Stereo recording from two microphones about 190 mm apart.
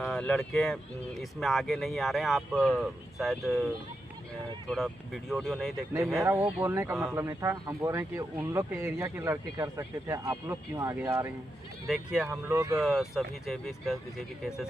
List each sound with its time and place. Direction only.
0.0 s speech: 5° left (ahead or behind)
4.6 s speech: centre (ahead or behind)
6.6 s speech: 15° right (ahead or behind)
11.8 s speech: centre (ahead or behind)
12.3 s speech: 15° right (ahead or behind)
12.8 s speech: centre (ahead or behind)